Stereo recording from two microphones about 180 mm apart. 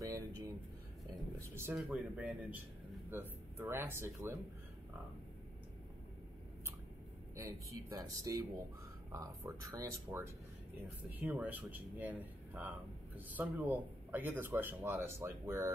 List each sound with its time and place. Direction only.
0.0 s a sound: 20° right (ahead or behind)
1.1 s speech: 15° right (ahead or behind)
7.9 s speech: 20° right (ahead or behind)